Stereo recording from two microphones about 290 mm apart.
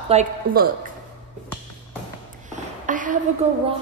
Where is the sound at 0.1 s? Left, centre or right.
Right.